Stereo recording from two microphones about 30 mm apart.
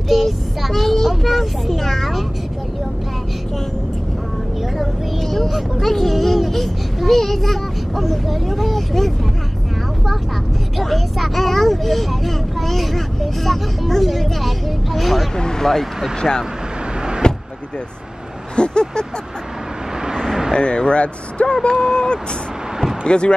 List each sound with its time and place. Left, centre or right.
0.1 s child singing: centre
0.9 s a sound: centre
5.8 s a sound: centre
7.9 s speech: centre
10.8 s speech: centre
16.2 s speech: left
17.2 s vehicle: left
18.6 s speech: left
20.5 s speech: left
21.6 s speech: left